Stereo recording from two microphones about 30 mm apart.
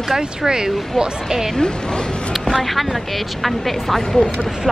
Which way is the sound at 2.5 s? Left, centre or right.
Centre.